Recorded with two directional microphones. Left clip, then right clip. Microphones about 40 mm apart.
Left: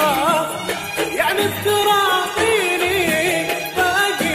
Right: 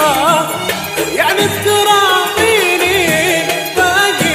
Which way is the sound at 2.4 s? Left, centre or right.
Right.